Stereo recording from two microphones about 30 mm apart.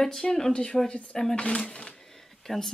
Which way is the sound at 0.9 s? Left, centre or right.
Left.